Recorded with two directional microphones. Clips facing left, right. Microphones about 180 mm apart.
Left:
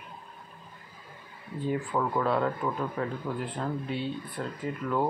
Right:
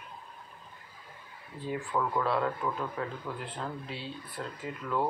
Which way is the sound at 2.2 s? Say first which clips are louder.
Left 3 dB; centre (ahead or behind).